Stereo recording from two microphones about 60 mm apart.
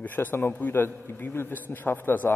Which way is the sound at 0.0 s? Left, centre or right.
Left.